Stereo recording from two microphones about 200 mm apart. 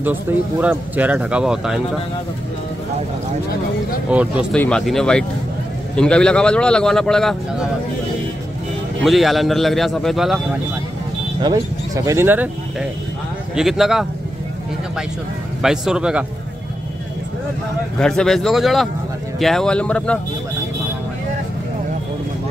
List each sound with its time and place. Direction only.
0.0 s speech: 10° right (ahead or behind)
4.1 s a man's voice: 5° right (ahead or behind)
4.6 s a man's voice: 5° left (ahead or behind)
9.0 s a man's voice: centre (ahead or behind)
11.4 s speech: 20° right (ahead or behind)
13.6 s a man's voice: centre (ahead or behind)
15.6 s a man's voice: 5° right (ahead or behind)
17.9 s a man's voice: 5° left (ahead or behind)